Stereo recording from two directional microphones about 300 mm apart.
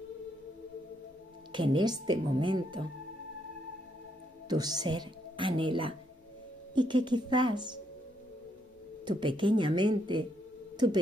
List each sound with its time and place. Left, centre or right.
1.5 s a woman's voice: centre
4.5 s a woman's voice: centre
9.0 s a woman's voice: centre